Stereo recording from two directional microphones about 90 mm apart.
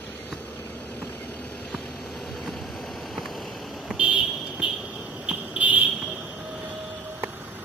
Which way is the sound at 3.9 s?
10° right (ahead or behind).